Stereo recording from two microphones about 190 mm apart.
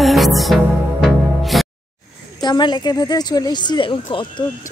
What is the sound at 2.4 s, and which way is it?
A woman's voice, 25° left (ahead or behind).